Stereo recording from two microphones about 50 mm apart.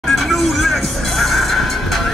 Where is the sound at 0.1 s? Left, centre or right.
Centre.